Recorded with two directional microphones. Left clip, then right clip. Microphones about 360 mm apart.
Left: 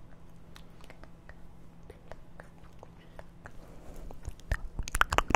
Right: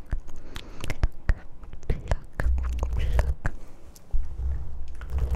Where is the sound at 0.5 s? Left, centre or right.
Right.